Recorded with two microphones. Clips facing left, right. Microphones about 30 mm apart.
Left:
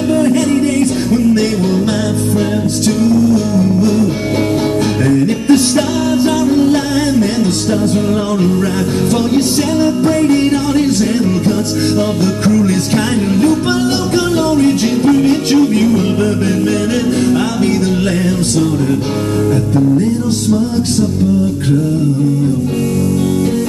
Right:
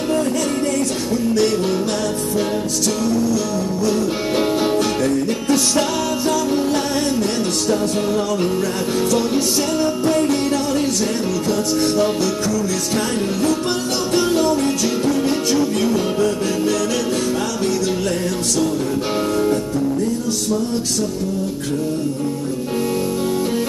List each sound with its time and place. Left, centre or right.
0.7 s music: left
5.0 s music: left
10.0 s music: left
12.4 s music: left
15.1 s music: left